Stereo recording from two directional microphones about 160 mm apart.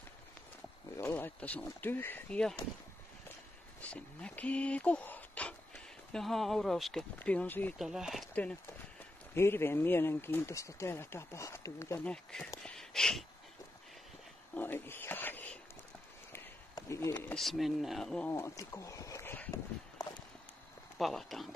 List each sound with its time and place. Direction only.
0.9 s speech: 15° left (ahead or behind)
3.8 s speech: 10° left (ahead or behind)
7.8 s speech: 5° right (ahead or behind); by 12.1 s 15° left (ahead or behind)
12.1 s speech: 5° left (ahead or behind)
12.6 s a sound: 5° left (ahead or behind)
14.5 s a sound: 10° left (ahead or behind)
17.3 s speech: centre (ahead or behind)
20.0 s walk: 20° left (ahead or behind)
21.0 s speech: centre (ahead or behind)